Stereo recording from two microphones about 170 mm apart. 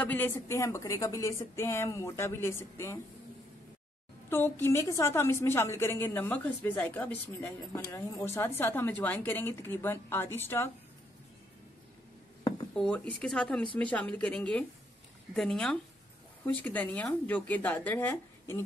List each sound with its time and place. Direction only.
0.0 s a woman's voice: 10° left (ahead or behind)
4.3 s a woman's voice: 15° left (ahead or behind)
12.7 s a woman's voice: 5° left (ahead or behind)